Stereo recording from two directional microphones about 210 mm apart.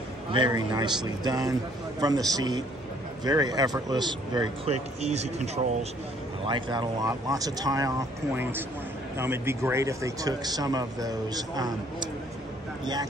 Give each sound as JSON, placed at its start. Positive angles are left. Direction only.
{"t": 0.3, "sound": "a man's voice", "side_deg": -20}
{"t": 5.0, "sound": "speech", "side_deg": -30}